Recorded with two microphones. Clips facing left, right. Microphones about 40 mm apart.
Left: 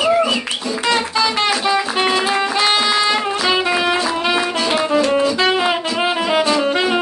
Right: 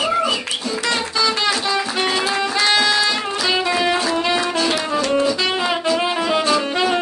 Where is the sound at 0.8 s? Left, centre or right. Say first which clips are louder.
Left 3 dB; centre.